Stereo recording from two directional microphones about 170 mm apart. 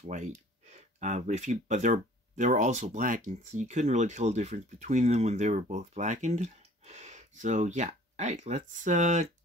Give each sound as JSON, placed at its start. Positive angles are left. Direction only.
{"t": 0.0, "sound": "speech", "side_deg": -45}